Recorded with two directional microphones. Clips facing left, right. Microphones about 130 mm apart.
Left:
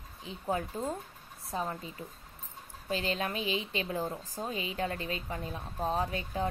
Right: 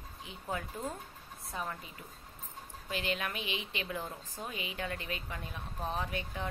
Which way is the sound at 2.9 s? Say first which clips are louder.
Left 4 dB; 30° left (ahead or behind).